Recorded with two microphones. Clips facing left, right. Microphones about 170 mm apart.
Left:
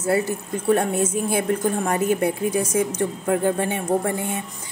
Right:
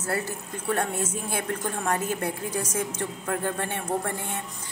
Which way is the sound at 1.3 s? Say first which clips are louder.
Left 8 dB; 10° left (ahead or behind).